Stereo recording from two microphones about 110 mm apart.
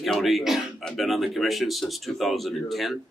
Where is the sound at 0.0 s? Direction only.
Centre (ahead or behind).